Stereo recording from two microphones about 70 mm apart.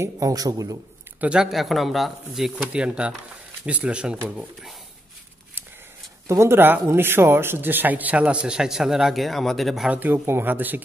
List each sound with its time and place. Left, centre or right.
0.0 s a man's voice: right
1.2 s speech: centre
1.5 s speech: centre
2.5 s speech: centre
6.2 s speech: right; by 9.8 s centre
9.8 s speech: right